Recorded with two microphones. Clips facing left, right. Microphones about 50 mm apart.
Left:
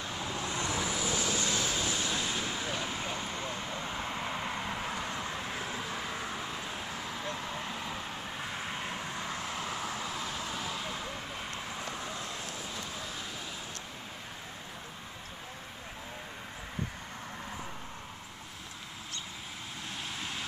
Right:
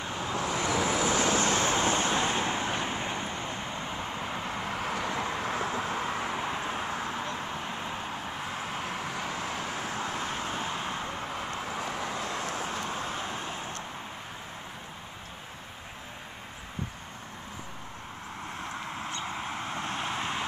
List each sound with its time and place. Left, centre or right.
0.2 s vehicle: right
4.6 s vehicle: right
8.8 s vehicle: right
19.2 s vehicle: right